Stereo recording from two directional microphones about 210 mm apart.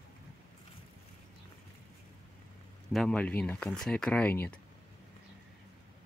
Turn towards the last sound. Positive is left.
turn(degrees=10)  # may be behind; listen again after turning